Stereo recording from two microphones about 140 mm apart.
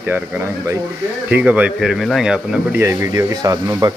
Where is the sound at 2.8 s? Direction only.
20° right (ahead or behind).